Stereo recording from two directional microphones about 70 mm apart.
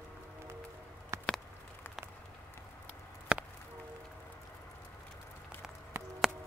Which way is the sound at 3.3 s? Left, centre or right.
Centre.